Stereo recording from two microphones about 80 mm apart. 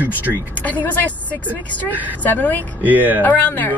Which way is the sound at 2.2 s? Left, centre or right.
Left.